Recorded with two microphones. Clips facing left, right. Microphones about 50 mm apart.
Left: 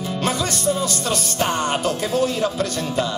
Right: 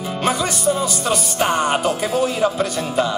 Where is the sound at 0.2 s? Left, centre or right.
Centre.